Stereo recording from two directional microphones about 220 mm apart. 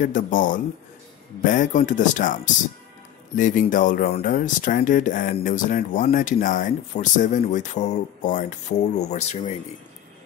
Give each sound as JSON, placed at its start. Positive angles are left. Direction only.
{"t": 0.0, "sound": "speech", "side_deg": 35}